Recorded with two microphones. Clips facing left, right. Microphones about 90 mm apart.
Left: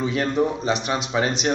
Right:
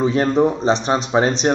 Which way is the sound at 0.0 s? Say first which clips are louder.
Right 6 dB; 35° right (ahead or behind).